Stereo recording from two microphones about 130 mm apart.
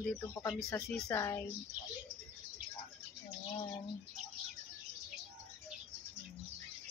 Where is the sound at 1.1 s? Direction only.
25° left (ahead or behind).